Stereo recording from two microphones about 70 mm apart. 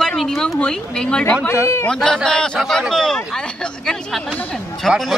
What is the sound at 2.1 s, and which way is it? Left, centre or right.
Speech, centre.